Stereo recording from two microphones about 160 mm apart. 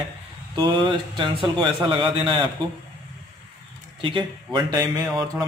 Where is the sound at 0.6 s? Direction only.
30° right (ahead or behind).